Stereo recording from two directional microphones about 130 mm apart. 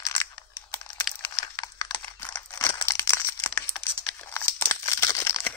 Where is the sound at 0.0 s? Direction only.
30° left (ahead or behind).